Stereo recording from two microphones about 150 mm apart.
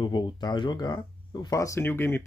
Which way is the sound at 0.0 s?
30° left (ahead or behind).